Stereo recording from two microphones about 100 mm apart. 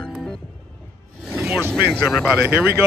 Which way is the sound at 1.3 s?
5° right (ahead or behind).